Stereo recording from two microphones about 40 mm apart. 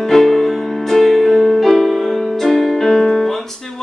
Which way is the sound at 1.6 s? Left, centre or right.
Centre.